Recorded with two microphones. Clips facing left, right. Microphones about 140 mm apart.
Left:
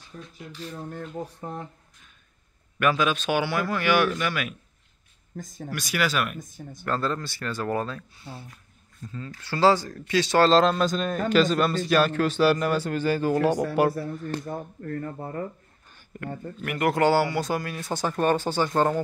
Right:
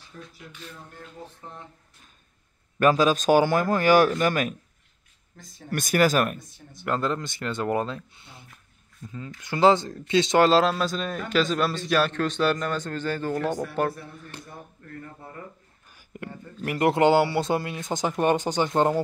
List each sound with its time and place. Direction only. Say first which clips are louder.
0.1 s speech: left 1 dB; 30° left (ahead or behind)
0.5 s a sound: left 8 dB; 40° left (ahead or behind)
1.4 s speech: left 7 dB; 50° left (ahead or behind)
2.8 s a man's voice: right 4 dB; 35° right (ahead or behind)
5.3 s speech: left 10 dB; 45° left (ahead or behind)
5.7 s speech: right 6 dB; 50° right (ahead or behind)
6.3 s speech: left 5 dB; 45° left (ahead or behind)
6.8 s a man's voice: right 1 dB; 15° right (ahead or behind)
10.5 s speech: left 1 dB; 5° right (ahead or behind)
14.3 s speech: left 11 dB; 50° left (ahead or behind)
16.1 s a man's voice: left 2 dB; 15° right (ahead or behind)
16.6 s a man's voice: right 2 dB; 25° right (ahead or behind)